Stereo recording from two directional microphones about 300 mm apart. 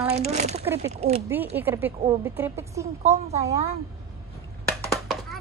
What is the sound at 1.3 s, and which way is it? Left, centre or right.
Speech, centre.